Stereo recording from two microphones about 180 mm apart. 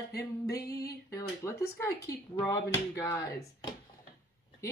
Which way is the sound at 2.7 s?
15° left (ahead or behind).